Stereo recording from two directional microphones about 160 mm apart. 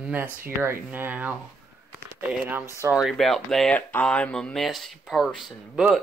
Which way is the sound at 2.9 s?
Centre (ahead or behind).